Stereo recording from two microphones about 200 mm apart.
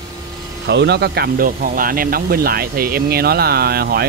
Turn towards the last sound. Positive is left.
turn(degrees=-50)  # may be behind; listen again after turning